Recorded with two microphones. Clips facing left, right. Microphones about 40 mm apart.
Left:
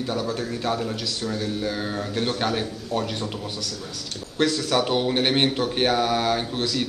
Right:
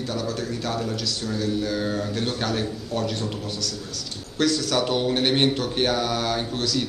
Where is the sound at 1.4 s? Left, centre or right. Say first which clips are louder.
Right 6 dB; centre.